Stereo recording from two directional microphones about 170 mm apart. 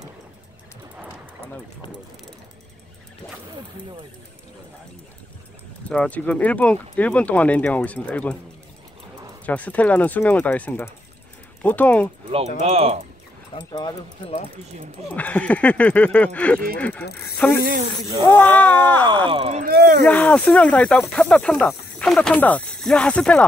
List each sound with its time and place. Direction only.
5.9 s speech: 10° left (ahead or behind)
9.5 s speech: 10° left (ahead or behind)
12.5 s speech: 35° right (ahead or behind)
13.6 s speech: 25° left (ahead or behind)
15.1 s speech: 10° left (ahead or behind)
19.0 s speech: 30° right (ahead or behind)
19.6 s speech: 55° right (ahead or behind)
20.1 s speech: 10° left (ahead or behind)